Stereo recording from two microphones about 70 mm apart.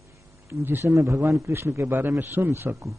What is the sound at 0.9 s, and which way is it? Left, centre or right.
A man's voice, right.